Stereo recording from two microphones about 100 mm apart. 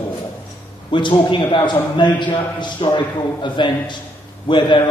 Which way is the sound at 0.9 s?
55° left (ahead or behind).